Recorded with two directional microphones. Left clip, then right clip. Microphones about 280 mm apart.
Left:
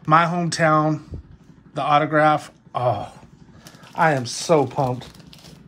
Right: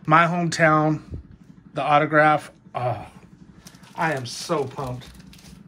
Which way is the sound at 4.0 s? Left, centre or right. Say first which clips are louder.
Left 6 dB; centre.